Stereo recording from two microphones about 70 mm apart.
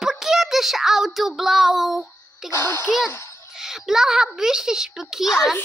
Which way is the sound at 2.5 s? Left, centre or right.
Left.